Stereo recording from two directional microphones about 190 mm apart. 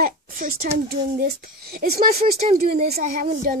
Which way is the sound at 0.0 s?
50° right (ahead or behind).